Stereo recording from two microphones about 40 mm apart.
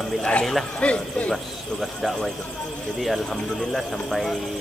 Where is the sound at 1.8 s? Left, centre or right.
Centre.